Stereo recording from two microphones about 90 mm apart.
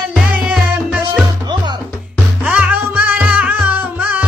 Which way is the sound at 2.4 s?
15° right (ahead or behind).